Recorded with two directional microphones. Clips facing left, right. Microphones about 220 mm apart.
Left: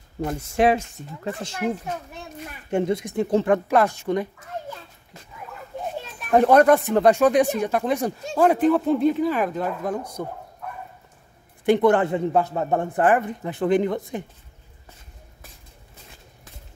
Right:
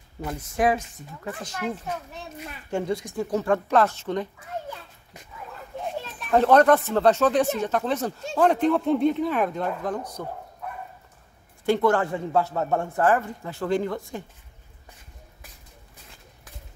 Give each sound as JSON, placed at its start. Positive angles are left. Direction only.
{"t": 0.6, "sound": "speech", "side_deg": 25}
{"t": 2.7, "sound": "speech", "side_deg": 20}
{"t": 6.1, "sound": "speech", "side_deg": 15}
{"t": 10.2, "sound": "speech", "side_deg": 15}
{"t": 11.6, "sound": "speech", "side_deg": 20}